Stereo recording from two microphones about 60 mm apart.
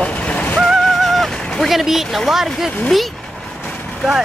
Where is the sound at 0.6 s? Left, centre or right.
Centre.